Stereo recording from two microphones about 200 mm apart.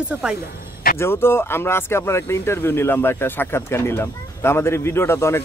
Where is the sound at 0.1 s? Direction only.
5° right (ahead or behind).